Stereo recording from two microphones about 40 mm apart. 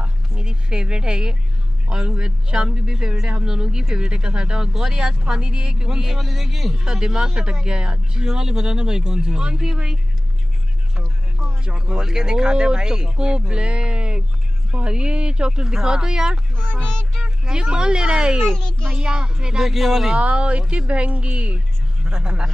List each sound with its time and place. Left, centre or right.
0.0 s a sound: right
1.9 s speech: centre
11.0 s a sound: centre
11.9 s speech: centre
16.7 s speech: centre
17.5 s speech: right
19.7 s speech: centre
20.2 s speech: right
22.0 s speech: right